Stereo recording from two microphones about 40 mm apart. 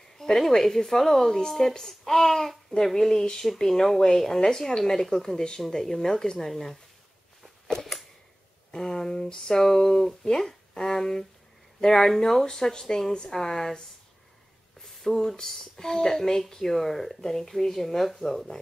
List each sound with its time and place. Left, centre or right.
0.2 s speech: centre
6.5 s speech: centre
8.7 s a sound: centre
9.6 s speech: centre
15.0 s speech: centre